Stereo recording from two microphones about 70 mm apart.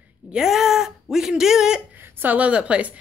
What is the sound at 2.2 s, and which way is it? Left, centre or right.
Speech, right.